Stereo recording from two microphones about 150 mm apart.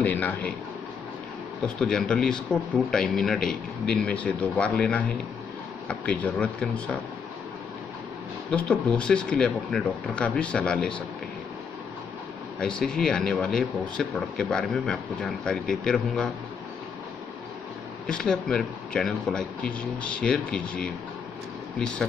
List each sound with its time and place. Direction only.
0.0 s a sound: 10° left (ahead or behind)
1.8 s speech: 5° left (ahead or behind)
8.5 s speech: 10° left (ahead or behind)
12.5 s speech: 5° left (ahead or behind)
18.0 s speech: 5° left (ahead or behind)